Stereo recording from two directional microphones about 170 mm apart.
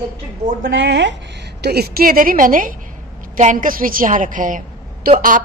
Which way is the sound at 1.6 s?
70° right (ahead or behind).